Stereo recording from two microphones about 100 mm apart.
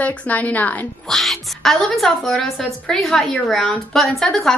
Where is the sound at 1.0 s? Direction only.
Centre (ahead or behind).